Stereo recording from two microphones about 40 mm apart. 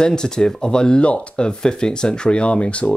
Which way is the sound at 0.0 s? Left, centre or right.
Centre.